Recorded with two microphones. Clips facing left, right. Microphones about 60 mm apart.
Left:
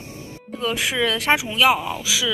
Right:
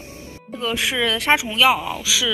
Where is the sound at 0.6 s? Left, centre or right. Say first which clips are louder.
Even; left.